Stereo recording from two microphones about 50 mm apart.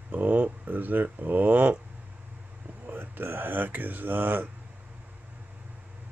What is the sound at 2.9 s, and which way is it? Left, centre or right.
Speech, right.